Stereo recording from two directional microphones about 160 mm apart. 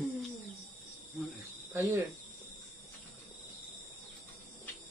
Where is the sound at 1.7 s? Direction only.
15° right (ahead or behind).